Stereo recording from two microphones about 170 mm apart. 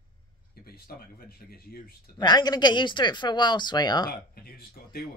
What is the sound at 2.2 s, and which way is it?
Speech, 25° left (ahead or behind).